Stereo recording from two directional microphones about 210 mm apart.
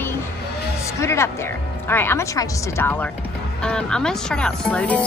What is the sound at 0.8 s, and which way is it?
Speech, 15° left (ahead or behind).